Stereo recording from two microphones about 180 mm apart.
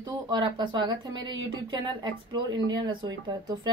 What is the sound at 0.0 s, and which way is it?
A woman's voice, 25° right (ahead or behind).